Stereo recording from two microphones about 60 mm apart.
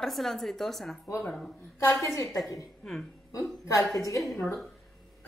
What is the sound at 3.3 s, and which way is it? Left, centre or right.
Speech, left.